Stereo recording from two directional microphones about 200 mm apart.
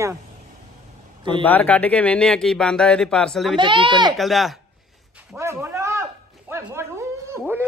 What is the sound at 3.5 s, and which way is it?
Speech, 25° right (ahead or behind).